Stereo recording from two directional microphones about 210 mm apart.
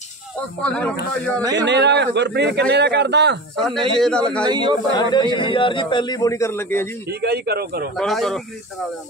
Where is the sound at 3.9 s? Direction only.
Centre (ahead or behind).